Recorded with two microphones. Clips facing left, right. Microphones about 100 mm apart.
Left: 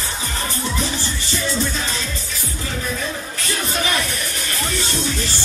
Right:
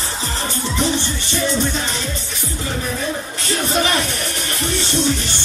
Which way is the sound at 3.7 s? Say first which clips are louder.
Right 4 dB; 30° right (ahead or behind).